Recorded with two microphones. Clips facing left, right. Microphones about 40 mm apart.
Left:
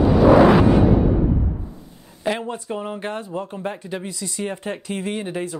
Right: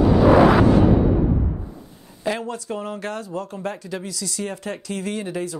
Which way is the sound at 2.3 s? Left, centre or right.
Centre.